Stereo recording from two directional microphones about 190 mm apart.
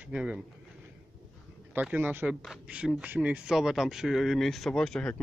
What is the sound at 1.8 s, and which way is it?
Speech, 10° right (ahead or behind).